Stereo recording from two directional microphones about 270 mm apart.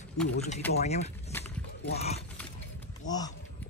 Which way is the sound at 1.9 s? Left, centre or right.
Left.